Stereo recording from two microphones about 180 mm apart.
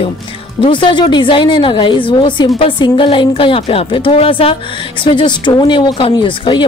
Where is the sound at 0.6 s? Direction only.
25° left (ahead or behind).